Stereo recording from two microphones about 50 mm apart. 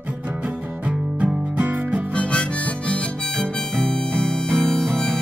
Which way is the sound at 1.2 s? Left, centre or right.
Right.